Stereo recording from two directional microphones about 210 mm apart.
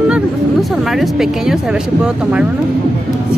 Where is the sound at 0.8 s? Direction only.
Centre (ahead or behind).